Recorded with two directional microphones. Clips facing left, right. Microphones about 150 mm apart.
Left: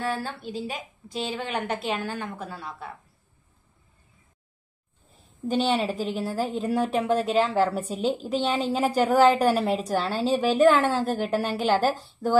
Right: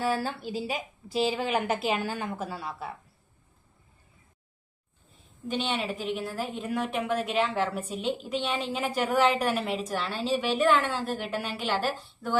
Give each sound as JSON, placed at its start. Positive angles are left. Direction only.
{"t": 0.0, "sound": "a woman's voice", "side_deg": 0}
{"t": 5.5, "sound": "a woman's voice", "side_deg": 35}